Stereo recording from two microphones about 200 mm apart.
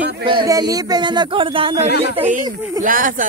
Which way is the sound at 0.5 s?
20° right (ahead or behind).